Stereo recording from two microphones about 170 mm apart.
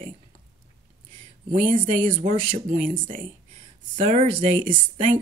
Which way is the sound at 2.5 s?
35° right (ahead or behind).